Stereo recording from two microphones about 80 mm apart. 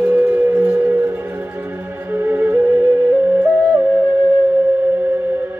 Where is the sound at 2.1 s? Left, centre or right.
Right.